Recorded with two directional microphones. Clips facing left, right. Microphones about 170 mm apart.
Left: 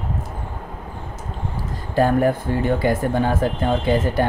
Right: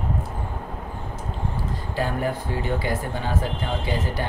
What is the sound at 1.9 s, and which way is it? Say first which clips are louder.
Speech: left 9 dB; 50° left (ahead or behind).